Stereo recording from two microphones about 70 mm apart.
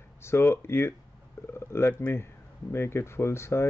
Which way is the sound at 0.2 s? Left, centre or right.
Left.